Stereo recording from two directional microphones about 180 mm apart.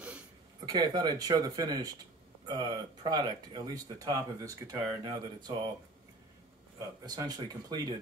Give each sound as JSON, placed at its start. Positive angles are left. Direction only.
{"t": 0.7, "sound": "speech", "side_deg": -25}
{"t": 7.1, "sound": "speech", "side_deg": -25}